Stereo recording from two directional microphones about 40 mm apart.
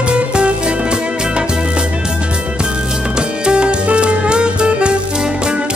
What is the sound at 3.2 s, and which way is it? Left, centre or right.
Music, right.